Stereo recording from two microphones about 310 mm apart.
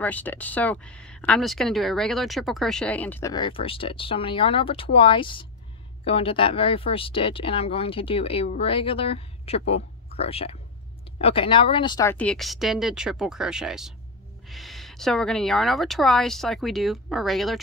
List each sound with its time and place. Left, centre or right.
0.0 s speech: centre